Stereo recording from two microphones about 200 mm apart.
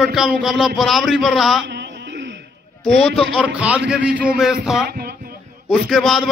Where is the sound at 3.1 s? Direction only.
5° right (ahead or behind).